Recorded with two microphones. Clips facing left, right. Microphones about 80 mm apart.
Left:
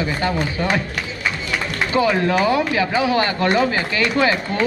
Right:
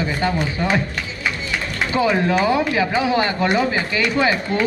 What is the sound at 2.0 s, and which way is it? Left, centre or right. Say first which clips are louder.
Speech: even; centre.